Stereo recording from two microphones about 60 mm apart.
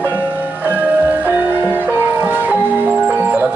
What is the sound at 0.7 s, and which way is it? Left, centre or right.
Music, right.